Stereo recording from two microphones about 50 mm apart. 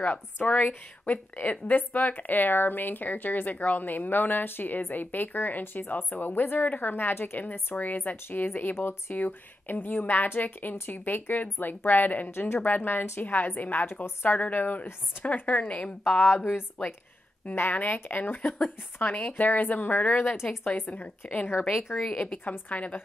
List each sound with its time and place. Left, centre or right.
0.0 s speech: left
12.3 s speech: left
12.5 s speech: left
14.4 s a woman's voice: left
16.1 s speech: left
17.6 s a woman's voice: left